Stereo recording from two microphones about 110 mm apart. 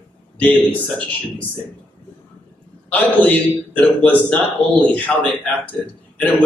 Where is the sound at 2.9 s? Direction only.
15° left (ahead or behind).